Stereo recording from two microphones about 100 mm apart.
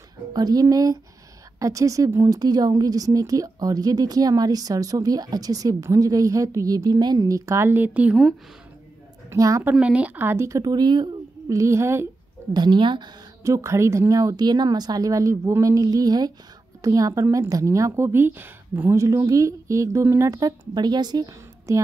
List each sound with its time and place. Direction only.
0.3 s a woman's voice: 40° right (ahead or behind); by 8.2 s 15° right (ahead or behind)
9.3 s a woman's voice: 30° right (ahead or behind)
9.7 s a woman's voice: 15° right (ahead or behind); by 11.1 s 45° right (ahead or behind)
11.4 s a woman's voice: 30° right (ahead or behind)
12.5 s speech: 50° right (ahead or behind)
13.4 s a woman's voice: 30° right (ahead or behind)
21.7 s a woman's voice: 30° right (ahead or behind)